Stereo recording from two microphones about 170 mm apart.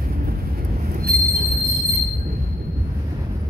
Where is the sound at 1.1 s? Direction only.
60° right (ahead or behind).